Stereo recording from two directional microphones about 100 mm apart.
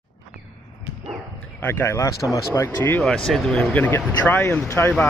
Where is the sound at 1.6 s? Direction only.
25° left (ahead or behind).